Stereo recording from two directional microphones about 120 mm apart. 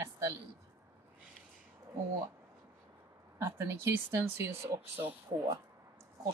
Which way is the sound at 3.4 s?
20° right (ahead or behind).